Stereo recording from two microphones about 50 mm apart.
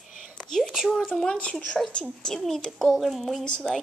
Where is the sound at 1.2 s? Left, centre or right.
Left.